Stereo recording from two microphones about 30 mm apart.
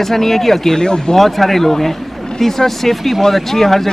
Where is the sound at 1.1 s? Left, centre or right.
Centre.